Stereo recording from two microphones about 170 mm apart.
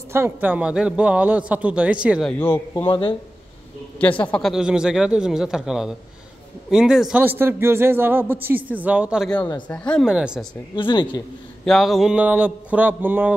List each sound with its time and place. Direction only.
0.1 s a man's voice: 10° right (ahead or behind)
2.3 s a man's voice: 15° left (ahead or behind)
2.9 s speech: 30° left (ahead or behind)
4.2 s a man's voice: 5° left (ahead or behind)
9.7 s a man's voice: 5° left (ahead or behind)
10.0 s speech: 5° right (ahead or behind)
10.8 s speech: 30° left (ahead or behind)
11.6 s a man's voice: centre (ahead or behind)